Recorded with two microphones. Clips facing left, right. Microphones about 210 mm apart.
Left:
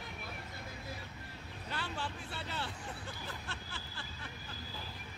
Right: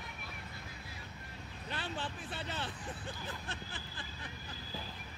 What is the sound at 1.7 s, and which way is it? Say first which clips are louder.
Vehicle: even; 20° right (ahead or behind).